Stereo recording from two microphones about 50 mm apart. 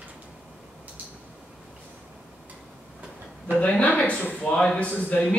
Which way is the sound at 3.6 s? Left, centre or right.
Left.